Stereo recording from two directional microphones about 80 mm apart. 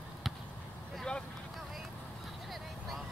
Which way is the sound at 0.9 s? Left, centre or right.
Centre.